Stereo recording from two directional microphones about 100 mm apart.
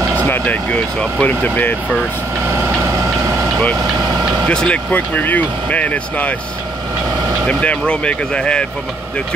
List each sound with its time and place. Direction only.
0.3 s speech: 15° left (ahead or behind)
4.1 s vehicle: 40° right (ahead or behind)
4.5 s speech: 10° left (ahead or behind)
7.4 s speech: 10° left (ahead or behind)